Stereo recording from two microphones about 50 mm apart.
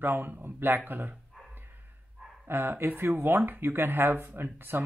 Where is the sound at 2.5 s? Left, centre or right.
Right.